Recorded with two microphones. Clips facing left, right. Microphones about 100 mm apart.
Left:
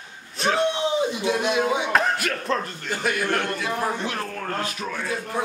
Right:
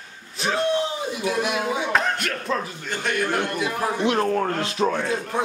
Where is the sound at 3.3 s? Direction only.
15° right (ahead or behind).